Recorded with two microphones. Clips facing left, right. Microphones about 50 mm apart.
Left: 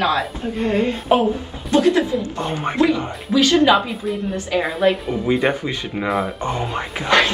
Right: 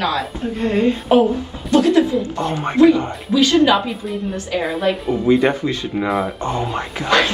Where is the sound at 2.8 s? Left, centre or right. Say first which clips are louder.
Right 10 dB; centre.